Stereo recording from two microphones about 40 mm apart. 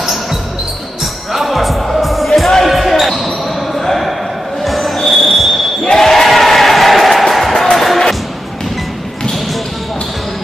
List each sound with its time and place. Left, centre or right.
1.3 s music: centre
2.6 s basketball bounce: centre
4.6 s a sound: centre
5.9 s music: centre